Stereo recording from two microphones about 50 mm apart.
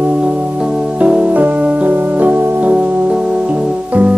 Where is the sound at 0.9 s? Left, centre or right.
Right.